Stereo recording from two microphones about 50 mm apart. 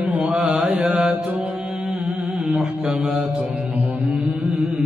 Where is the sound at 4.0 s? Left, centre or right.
Right.